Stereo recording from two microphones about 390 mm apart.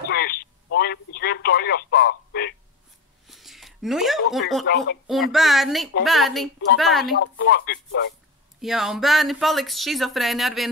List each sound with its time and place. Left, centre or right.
0.1 s telephone: left
3.3 s a sound: centre
5.0 s speech: centre
7.2 s speech: left
8.5 s speech: centre